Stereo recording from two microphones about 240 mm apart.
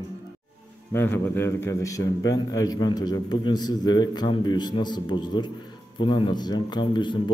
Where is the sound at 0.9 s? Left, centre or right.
Centre.